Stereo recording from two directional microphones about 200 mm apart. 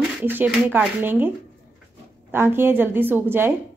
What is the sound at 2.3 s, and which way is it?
A woman's voice, 10° right (ahead or behind).